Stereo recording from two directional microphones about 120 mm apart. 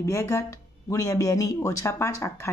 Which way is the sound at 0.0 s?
25° left (ahead or behind).